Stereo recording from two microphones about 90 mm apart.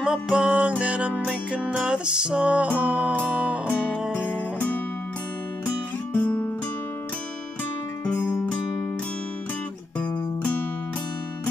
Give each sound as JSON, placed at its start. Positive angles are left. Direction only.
{"t": 0.0, "sound": "music", "side_deg": -10}
{"t": 3.2, "sound": "music", "side_deg": 20}
{"t": 6.1, "sound": "music", "side_deg": 20}
{"t": 8.2, "sound": "music", "side_deg": 30}
{"t": 9.9, "sound": "music", "side_deg": 15}